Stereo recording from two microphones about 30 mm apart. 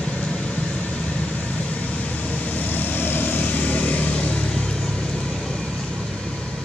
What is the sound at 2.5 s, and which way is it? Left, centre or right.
Vehicle, left.